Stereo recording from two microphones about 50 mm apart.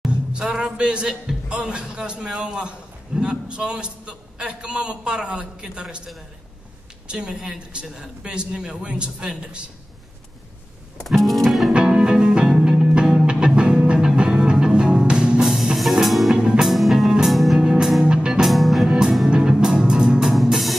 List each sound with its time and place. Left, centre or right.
0.1 s a sound: centre
0.7 s a man's voice: centre
7.1 s a man's voice: centre
11.1 s music: centre
11.7 s music: centre
12.5 s music: centre
15.5 s music: centre
17.6 s music: centre
18.4 s music: centre
18.9 s music: centre
20.2 s music: centre